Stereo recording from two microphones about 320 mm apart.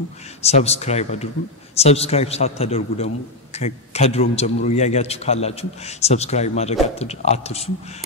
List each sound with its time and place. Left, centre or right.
0.4 s a man's voice: centre